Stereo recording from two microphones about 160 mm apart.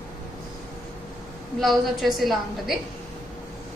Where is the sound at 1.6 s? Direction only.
Centre (ahead or behind).